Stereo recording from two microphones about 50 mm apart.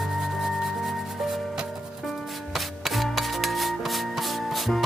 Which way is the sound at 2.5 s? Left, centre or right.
Centre.